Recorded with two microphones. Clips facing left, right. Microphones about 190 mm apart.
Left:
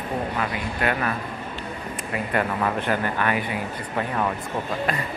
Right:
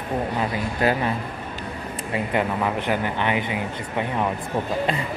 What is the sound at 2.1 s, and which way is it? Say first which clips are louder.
Speech: right 1 dB; 15° right (ahead or behind).